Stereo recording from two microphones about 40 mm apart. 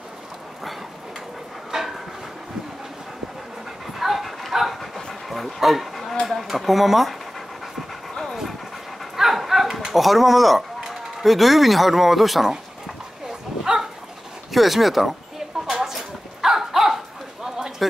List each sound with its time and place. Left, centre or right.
1.7 s a sound: centre
3.8 s dog: centre
6.4 s speech: centre
8.1 s dog: centre
9.1 s dog: centre
9.9 s speech: centre
14.5 s a sound: centre